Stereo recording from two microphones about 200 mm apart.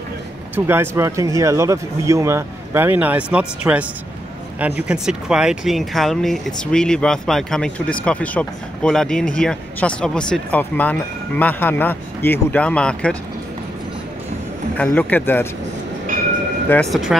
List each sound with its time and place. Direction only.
0.6 s speech: 10° right (ahead or behind); by 13.2 s 5° left (ahead or behind)
14.8 s speech: 10° left (ahead or behind)
16.6 s speech: 10° left (ahead or behind)